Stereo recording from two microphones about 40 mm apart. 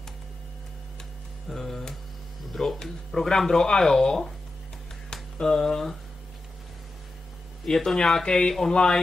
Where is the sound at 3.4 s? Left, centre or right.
Centre.